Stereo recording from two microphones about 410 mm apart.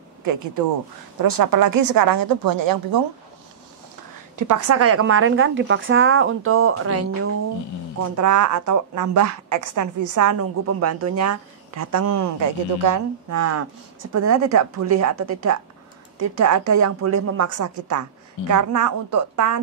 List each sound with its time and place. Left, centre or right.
1.1 s a woman's voice: right
4.4 s a woman's voice: right
17.6 s a woman's voice: right